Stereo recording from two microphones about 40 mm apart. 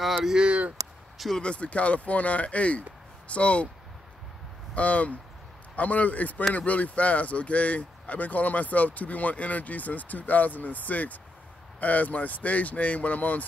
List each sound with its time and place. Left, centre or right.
0.4 s speech: right
1.4 s speech: left
4.7 s speech: left